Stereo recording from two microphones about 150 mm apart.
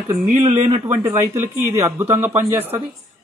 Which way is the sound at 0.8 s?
20° right (ahead or behind).